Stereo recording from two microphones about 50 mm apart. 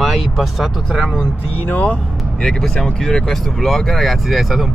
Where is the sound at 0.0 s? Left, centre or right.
Centre.